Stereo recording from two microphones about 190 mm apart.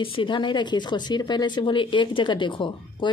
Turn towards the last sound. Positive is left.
turn(degrees=25)  # may be behind; listen again after turning